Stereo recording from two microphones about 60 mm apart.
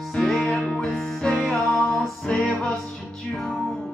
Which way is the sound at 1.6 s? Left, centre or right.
Centre.